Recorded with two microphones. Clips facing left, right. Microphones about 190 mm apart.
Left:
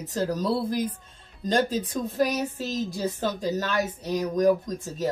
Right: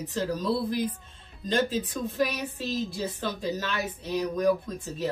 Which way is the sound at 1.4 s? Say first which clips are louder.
Left 2 dB; 40° left (ahead or behind).